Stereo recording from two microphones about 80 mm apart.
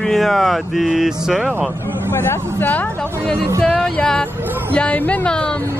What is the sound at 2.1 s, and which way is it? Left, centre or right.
Speech, left.